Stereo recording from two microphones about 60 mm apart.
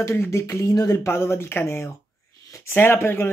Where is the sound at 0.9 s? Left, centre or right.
Left.